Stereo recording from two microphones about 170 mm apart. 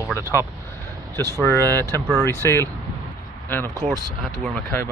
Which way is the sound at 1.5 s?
15° left (ahead or behind).